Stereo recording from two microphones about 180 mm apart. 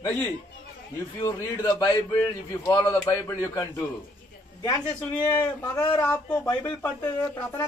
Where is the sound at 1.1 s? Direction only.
15° left (ahead or behind).